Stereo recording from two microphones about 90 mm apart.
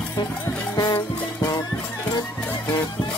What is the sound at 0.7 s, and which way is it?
Music, 45° left (ahead or behind).